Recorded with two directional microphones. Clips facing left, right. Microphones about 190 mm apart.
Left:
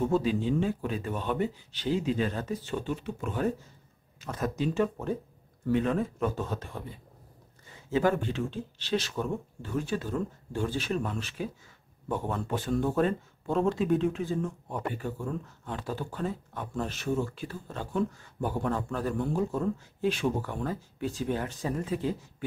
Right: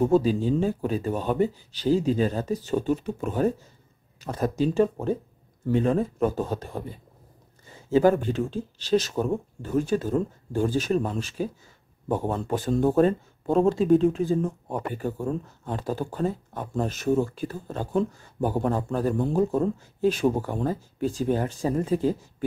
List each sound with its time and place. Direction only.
0.0 s speech: 40° right (ahead or behind)